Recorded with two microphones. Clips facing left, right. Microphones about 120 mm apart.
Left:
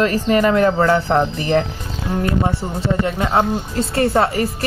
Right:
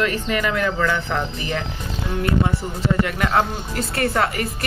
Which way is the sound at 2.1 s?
30° left (ahead or behind).